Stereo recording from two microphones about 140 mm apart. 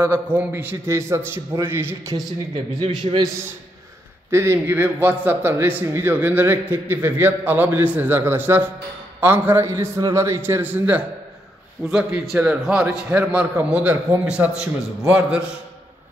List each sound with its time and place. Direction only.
0.0 s a man's voice: 15° right (ahead or behind)
2.1 s speech: 35° right (ahead or behind)
4.3 s a man's voice: 20° right (ahead or behind)